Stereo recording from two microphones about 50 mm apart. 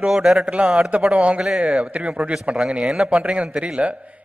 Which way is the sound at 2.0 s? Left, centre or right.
Centre.